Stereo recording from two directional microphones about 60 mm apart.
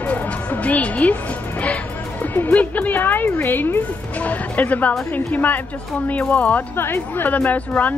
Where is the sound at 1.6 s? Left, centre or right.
Left.